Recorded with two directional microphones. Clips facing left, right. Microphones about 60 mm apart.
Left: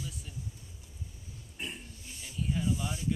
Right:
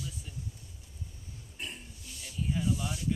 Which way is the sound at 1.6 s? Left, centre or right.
Centre.